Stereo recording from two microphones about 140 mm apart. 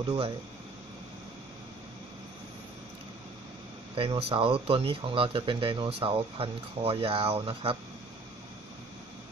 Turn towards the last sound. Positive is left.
turn(degrees=-40)  # may be behind; listen again after turning